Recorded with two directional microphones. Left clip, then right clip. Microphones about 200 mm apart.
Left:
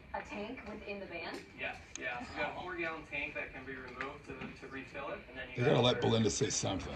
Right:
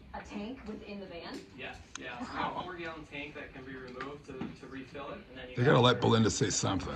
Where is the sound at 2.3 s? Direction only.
30° left (ahead or behind).